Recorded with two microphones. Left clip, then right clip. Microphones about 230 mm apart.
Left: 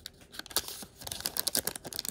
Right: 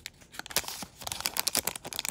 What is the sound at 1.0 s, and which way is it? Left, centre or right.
Tearing, centre.